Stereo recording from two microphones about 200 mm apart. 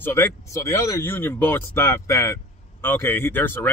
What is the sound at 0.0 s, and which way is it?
Speech, 15° left (ahead or behind).